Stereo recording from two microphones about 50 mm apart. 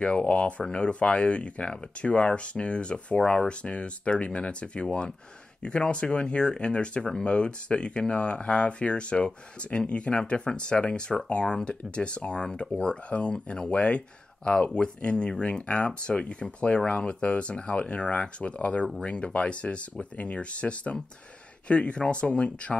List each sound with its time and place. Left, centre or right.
0.0 s speech: left